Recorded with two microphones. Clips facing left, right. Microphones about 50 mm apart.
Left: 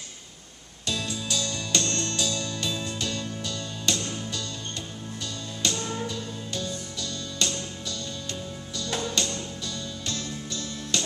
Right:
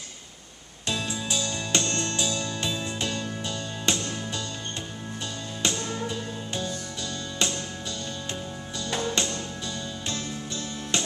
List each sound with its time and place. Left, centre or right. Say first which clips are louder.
0.8 s music: right 1 dB; right
5.6 s music: even; centre